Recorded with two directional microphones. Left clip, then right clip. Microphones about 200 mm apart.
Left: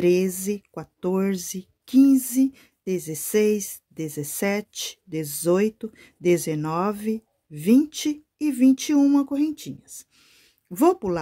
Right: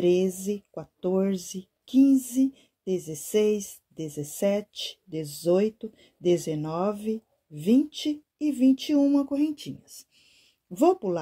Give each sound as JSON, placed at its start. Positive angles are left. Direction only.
{"t": 0.0, "sound": "speech", "side_deg": 30}
{"t": 9.2, "sound": "speech", "side_deg": 20}
{"t": 10.8, "sound": "speech", "side_deg": 30}